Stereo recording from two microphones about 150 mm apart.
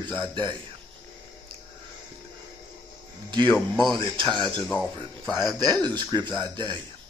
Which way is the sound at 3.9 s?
30° right (ahead or behind).